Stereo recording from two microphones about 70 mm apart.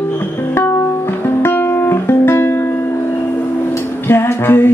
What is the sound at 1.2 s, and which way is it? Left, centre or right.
Music, left.